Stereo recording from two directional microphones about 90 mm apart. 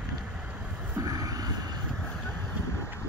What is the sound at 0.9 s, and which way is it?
Vehicle, 40° right (ahead or behind).